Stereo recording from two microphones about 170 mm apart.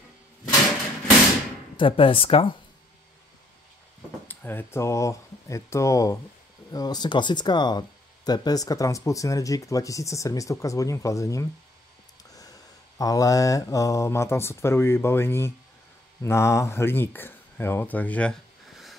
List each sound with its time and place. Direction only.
1.8 s speech: 30° left (ahead or behind)
4.3 s speech: 10° left (ahead or behind)
12.4 s mantra: 20° left (ahead or behind)
16.2 s speech: 15° left (ahead or behind); by 18.9 s centre (ahead or behind)